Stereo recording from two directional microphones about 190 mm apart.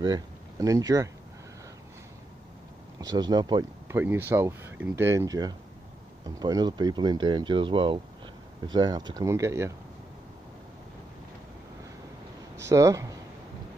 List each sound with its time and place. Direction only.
0.0 s speech: 20° right (ahead or behind)
3.0 s speech: 20° right (ahead or behind)
4.0 s speech: 10° right (ahead or behind)
12.5 s speech: 15° right (ahead or behind)